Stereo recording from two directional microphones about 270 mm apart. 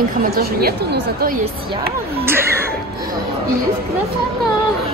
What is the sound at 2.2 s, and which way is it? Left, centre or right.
Speech, centre.